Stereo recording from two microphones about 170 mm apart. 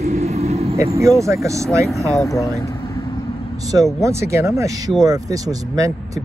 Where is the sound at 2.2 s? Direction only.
20° left (ahead or behind).